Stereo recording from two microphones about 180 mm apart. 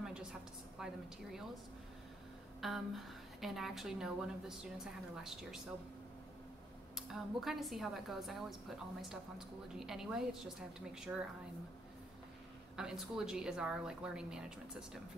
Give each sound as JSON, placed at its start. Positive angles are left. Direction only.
{"t": 0.0, "sound": "a sound", "side_deg": -5}
{"t": 2.6, "sound": "a woman's voice", "side_deg": 0}
{"t": 7.0, "sound": "a woman's voice", "side_deg": 0}
{"t": 12.7, "sound": "a woman's voice", "side_deg": -5}